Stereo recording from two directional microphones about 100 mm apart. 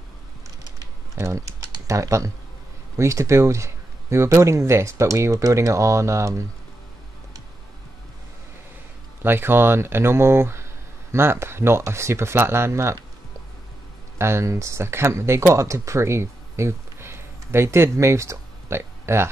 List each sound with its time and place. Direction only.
1.1 s speech: 30° right (ahead or behind)
9.2 s speech: 20° right (ahead or behind)
14.1 s speech: 25° right (ahead or behind)